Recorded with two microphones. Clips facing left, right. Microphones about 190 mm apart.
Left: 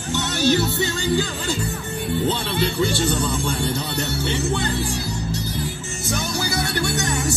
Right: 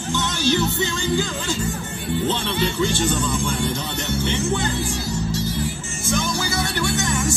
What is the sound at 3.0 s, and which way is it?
Speech, 35° left (ahead or behind).